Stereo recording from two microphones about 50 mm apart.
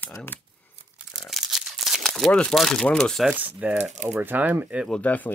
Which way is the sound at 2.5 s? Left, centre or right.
Centre.